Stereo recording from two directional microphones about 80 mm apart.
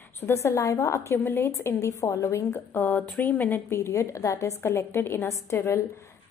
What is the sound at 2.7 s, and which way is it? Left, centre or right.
A woman's voice, left.